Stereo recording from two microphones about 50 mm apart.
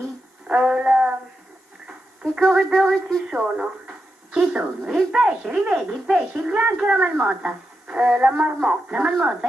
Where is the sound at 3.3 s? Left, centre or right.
Centre.